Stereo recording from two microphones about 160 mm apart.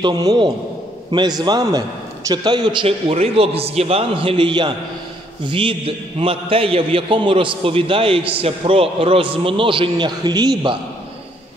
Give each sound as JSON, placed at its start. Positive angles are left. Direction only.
{"t": 0.0, "sound": "a man's voice", "side_deg": -25}